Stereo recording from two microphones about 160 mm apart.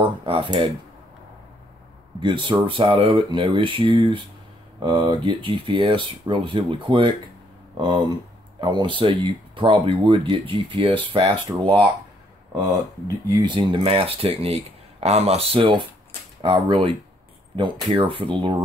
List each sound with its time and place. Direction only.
0.0 s speech: 35° right (ahead or behind)
2.1 s speech: 30° right (ahead or behind)
13.3 s speech: 30° right (ahead or behind)